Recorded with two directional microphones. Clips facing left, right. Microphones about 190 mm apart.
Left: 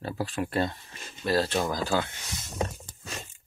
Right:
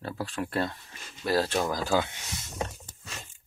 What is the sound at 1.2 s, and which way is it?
Speech, 10° right (ahead or behind).